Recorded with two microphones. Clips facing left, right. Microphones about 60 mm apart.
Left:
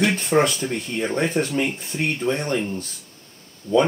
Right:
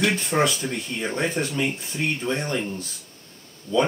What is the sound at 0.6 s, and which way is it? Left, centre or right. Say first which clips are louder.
Speech: left 3 dB; centre.